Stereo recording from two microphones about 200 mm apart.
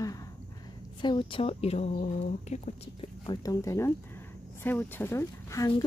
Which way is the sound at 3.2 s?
15° left (ahead or behind).